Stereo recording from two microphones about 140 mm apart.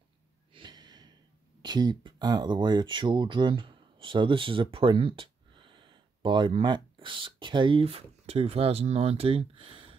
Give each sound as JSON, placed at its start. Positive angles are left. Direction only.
{"t": 0.5, "sound": "gasp", "side_deg": -35}
{"t": 1.6, "sound": "speech", "side_deg": -30}